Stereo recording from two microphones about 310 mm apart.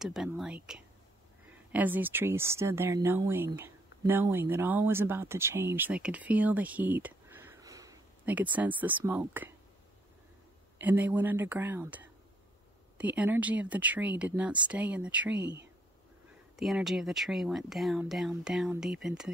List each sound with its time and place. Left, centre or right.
0.0 s speech: centre
10.8 s speech: centre
15.4 s speech: right
16.5 s speech: centre